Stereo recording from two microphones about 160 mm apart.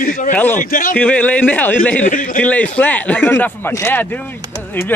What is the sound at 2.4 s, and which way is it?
A man's voice, 10° left (ahead or behind).